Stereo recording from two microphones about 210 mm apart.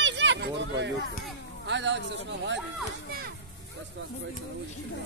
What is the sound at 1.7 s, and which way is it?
Speech, 55° right (ahead or behind).